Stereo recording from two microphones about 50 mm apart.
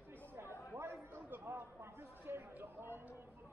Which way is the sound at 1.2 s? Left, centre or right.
Right.